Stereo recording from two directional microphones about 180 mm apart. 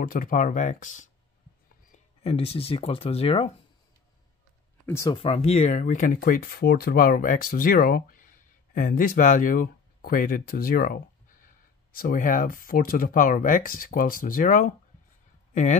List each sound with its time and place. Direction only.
0.0 s speech: 50° left (ahead or behind)
2.2 s speech: 35° left (ahead or behind)
4.8 s speech: 15° left (ahead or behind)
5.1 s speech: 35° left (ahead or behind)